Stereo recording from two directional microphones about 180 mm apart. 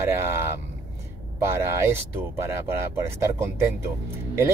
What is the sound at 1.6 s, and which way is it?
Speech, 15° right (ahead or behind).